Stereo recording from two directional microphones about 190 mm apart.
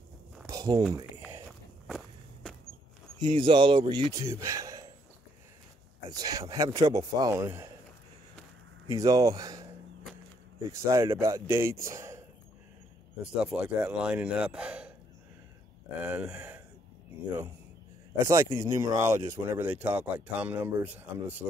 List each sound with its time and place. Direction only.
0.5 s a sound: 20° right (ahead or behind)
1.9 s walk: centre (ahead or behind)
3.3 s a man's voice: 25° right (ahead or behind)
6.0 s a man's voice: 20° right (ahead or behind)
8.9 s a man's voice: 20° right (ahead or behind)
10.7 s speech: 15° right (ahead or behind)
13.2 s a man's voice: 5° right (ahead or behind)
16.0 s speech: 10° right (ahead or behind)
18.2 s speech: 20° right (ahead or behind)